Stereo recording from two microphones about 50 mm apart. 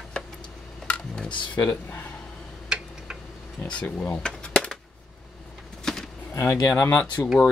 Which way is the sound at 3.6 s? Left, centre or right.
Left.